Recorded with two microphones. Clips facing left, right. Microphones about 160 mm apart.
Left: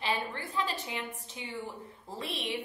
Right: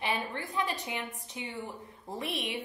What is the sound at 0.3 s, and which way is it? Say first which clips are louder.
A woman's voice: right 1 dB; 20° right (ahead or behind).